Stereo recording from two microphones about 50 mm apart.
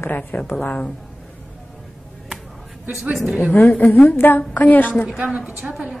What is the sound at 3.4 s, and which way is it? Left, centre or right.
A woman's voice, left.